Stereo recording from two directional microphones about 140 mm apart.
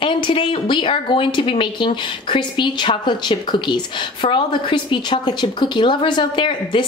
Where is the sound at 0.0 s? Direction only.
35° left (ahead or behind).